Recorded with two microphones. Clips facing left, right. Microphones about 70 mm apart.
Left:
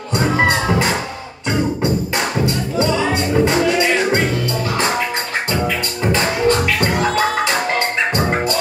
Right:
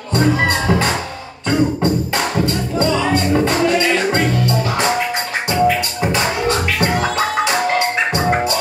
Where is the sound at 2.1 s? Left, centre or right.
Left.